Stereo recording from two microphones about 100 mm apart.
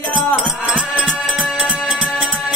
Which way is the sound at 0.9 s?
5° right (ahead or behind).